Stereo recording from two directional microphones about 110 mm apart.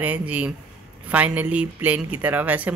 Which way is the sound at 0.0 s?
15° right (ahead or behind).